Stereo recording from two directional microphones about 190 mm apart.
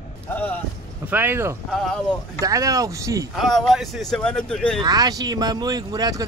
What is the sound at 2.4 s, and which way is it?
Speech, 15° right (ahead or behind).